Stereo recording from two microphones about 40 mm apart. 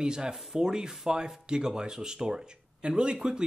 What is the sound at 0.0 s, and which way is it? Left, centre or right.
Speech, centre.